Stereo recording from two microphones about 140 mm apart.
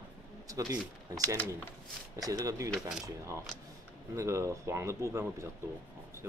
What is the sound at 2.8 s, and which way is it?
Speech, 5° right (ahead or behind).